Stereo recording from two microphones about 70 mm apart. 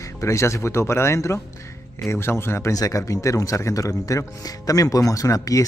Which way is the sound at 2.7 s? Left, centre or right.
Left.